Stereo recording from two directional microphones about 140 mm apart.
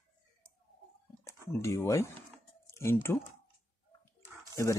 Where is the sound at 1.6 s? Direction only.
20° left (ahead or behind).